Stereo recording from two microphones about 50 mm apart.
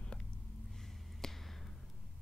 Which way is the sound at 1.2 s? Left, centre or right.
Centre.